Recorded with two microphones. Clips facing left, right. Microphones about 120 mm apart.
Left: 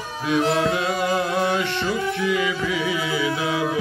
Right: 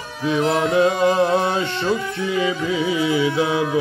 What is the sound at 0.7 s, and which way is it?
Music, 30° right (ahead or behind).